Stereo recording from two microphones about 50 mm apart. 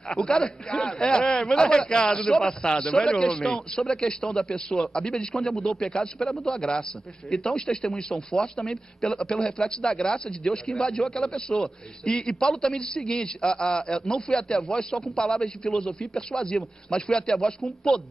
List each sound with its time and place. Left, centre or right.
0.1 s a man's voice: centre
6.5 s a man's voice: centre
7.2 s a man's voice: centre